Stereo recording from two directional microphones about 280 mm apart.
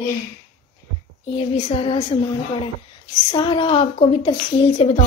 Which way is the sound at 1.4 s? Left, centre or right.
Left.